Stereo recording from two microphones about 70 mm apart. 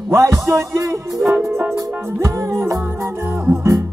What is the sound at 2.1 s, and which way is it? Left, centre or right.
Music, right.